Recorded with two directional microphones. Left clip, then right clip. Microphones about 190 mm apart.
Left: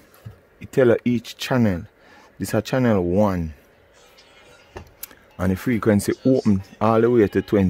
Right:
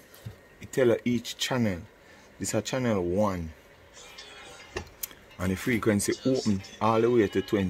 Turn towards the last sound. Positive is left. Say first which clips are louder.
# left 7 dB
turn(degrees=60)  # may be behind; listen again after turning